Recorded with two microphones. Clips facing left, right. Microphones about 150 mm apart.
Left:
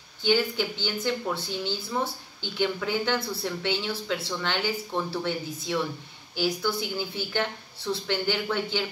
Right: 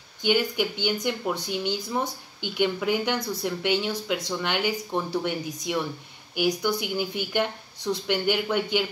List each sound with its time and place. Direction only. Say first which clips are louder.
0.2 s speech: right 1 dB; 15° right (ahead or behind)